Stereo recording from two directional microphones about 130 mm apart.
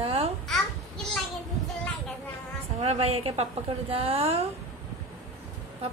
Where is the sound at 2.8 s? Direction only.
50° right (ahead or behind).